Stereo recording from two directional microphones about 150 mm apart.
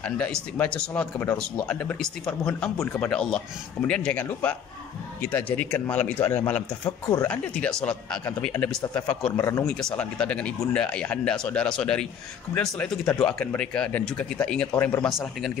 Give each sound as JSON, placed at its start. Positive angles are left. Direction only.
{"t": 0.0, "sound": "a man's voice", "side_deg": 5}
{"t": 9.7, "sound": "a man's voice", "side_deg": 5}
{"t": 15.0, "sound": "speech", "side_deg": 0}